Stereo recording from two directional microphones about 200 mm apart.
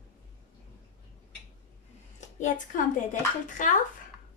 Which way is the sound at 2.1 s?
40° left (ahead or behind).